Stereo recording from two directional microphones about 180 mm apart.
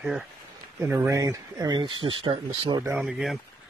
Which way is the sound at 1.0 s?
20° right (ahead or behind).